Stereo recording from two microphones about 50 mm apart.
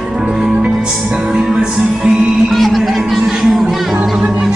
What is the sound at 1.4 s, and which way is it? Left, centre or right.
Music, right.